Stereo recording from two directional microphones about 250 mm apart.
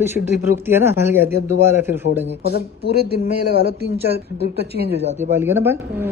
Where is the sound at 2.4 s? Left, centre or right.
Left.